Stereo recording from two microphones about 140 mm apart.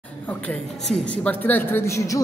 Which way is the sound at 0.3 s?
5° left (ahead or behind).